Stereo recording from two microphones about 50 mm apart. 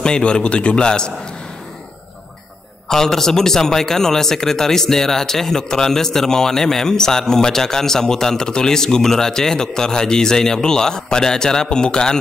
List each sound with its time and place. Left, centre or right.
0.0 s a man's voice: centre
2.9 s speech: centre